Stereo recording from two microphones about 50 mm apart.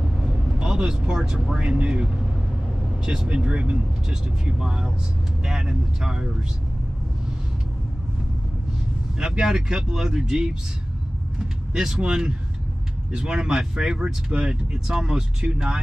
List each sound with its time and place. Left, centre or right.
0.2 s speech: centre
3.1 s speech: centre
9.2 s speech: centre
11.7 s speech: centre